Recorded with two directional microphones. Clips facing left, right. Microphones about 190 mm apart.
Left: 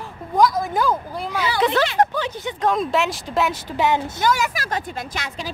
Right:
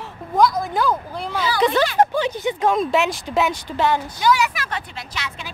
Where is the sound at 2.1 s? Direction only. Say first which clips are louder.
Right 5 dB; 15° right (ahead or behind).